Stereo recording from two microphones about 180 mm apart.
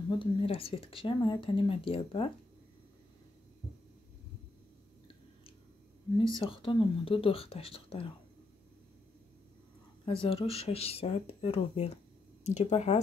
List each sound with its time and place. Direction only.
0.2 s speech: 30° left (ahead or behind)
6.1 s speech: 30° left (ahead or behind)
10.0 s speech: 30° left (ahead or behind)